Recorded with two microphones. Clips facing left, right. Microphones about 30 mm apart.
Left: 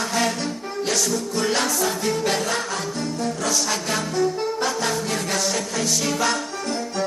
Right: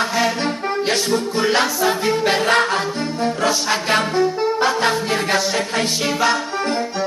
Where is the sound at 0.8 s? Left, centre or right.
Right.